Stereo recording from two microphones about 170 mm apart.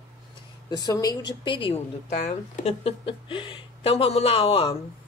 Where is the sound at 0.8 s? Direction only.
20° left (ahead or behind).